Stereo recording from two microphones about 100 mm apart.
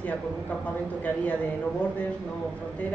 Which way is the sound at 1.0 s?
15° left (ahead or behind).